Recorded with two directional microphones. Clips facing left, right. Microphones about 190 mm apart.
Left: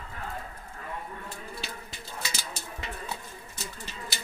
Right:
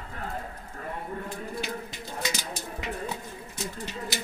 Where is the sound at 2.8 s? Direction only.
15° right (ahead or behind).